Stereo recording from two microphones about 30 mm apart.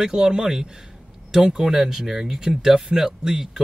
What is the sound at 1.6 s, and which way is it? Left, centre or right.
Speech, centre.